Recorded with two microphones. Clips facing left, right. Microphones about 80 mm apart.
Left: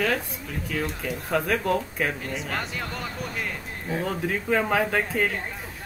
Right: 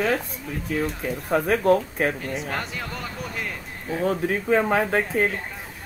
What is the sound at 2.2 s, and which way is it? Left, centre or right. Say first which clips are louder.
A man's voice: right 2 dB; centre.